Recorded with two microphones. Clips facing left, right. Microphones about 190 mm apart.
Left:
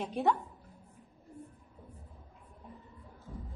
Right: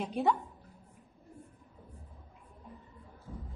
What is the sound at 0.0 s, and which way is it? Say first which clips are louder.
Speech: even; centre (ahead or behind).